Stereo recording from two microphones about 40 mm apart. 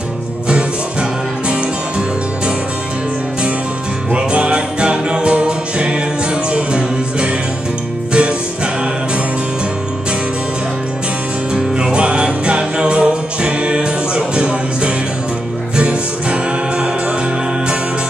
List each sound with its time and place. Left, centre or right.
1.5 s music: right
4.1 s music: right
11.5 s music: right